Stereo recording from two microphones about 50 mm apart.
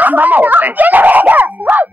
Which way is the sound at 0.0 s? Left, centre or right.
Right.